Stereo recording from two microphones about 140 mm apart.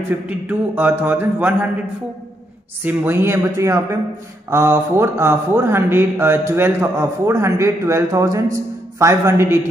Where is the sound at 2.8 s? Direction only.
15° right (ahead or behind).